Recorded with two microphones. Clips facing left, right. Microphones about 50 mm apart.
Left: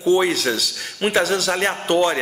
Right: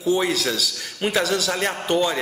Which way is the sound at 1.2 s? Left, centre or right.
Centre.